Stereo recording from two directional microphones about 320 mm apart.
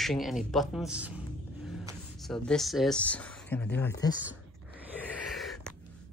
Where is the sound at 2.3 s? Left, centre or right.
Centre.